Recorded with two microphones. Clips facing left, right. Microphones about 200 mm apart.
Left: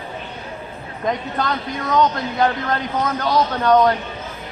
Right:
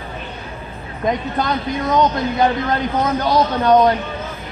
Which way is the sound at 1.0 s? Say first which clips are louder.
Right 3 dB; 15° right (ahead or behind).